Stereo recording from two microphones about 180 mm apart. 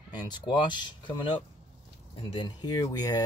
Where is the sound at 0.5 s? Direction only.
25° left (ahead or behind).